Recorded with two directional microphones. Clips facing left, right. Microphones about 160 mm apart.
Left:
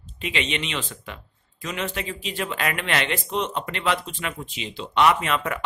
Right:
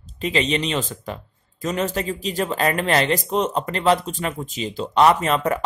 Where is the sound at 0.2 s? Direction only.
35° right (ahead or behind).